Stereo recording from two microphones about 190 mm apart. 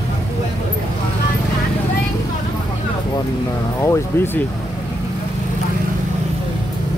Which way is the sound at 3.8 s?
15° left (ahead or behind).